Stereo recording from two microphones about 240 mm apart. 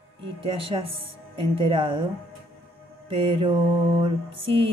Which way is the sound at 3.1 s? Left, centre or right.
Right.